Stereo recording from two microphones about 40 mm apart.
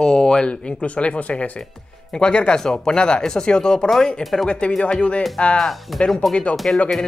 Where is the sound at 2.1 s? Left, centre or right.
Left.